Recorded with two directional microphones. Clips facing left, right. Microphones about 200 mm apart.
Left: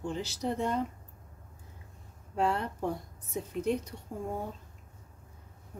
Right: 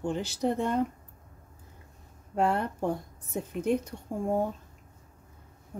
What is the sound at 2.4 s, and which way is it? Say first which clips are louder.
Speech: right 3 dB; 55° right (ahead or behind).